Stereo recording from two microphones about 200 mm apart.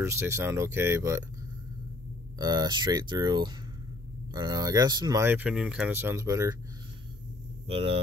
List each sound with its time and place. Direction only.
0.0 s speech: 15° right (ahead or behind)
2.3 s speech: 20° right (ahead or behind)
7.6 s speech: 30° right (ahead or behind)